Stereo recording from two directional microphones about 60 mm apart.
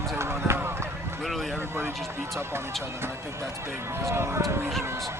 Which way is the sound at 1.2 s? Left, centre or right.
Centre.